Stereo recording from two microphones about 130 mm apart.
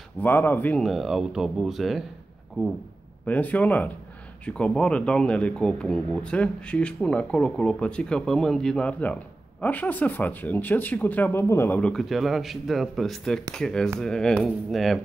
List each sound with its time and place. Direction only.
0.2 s speech: 15° left (ahead or behind)
0.8 s speech: centre (ahead or behind)
3.3 s speech: 10° left (ahead or behind)